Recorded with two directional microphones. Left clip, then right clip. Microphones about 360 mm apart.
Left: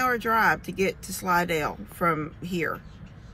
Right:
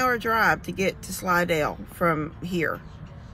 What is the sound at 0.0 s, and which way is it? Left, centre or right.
Speech, centre.